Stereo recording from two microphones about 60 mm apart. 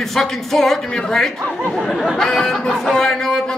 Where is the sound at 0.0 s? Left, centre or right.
Centre.